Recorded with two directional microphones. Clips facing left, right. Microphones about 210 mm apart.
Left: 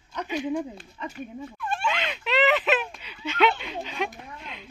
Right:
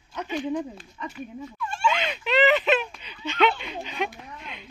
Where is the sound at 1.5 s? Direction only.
60° left (ahead or behind).